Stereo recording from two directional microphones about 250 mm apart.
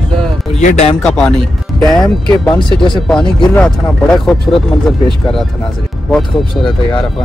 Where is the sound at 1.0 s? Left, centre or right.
Centre.